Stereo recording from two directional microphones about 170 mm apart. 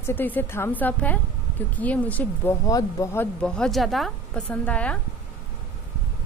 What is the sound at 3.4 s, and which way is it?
A woman's voice, 5° left (ahead or behind).